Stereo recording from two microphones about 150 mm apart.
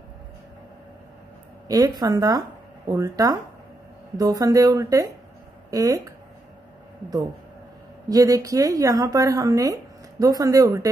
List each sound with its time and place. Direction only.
1.7 s speech: 25° right (ahead or behind)
8.1 s speech: 25° right (ahead or behind)